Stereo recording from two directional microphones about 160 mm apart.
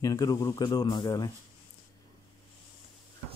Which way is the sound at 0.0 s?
20° left (ahead or behind).